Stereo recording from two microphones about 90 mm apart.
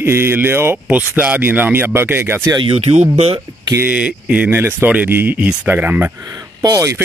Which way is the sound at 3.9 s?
15° right (ahead or behind).